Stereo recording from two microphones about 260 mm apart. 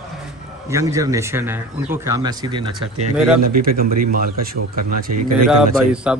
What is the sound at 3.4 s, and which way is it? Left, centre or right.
Speech, right.